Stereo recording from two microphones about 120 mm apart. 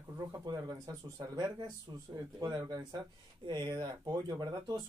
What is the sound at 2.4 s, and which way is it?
Speech, 30° right (ahead or behind).